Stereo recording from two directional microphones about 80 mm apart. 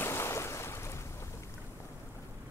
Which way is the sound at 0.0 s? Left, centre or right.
Left.